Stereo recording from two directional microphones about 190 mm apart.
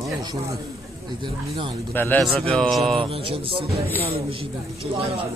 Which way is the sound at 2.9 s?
30° right (ahead or behind).